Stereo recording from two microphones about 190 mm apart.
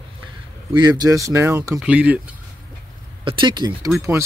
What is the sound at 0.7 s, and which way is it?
Speech, 20° right (ahead or behind).